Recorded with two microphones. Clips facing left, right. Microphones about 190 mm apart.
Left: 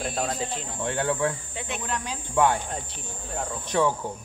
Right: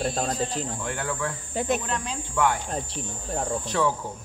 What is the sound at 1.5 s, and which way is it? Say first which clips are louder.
Speech: right 9 dB; 40° right (ahead or behind).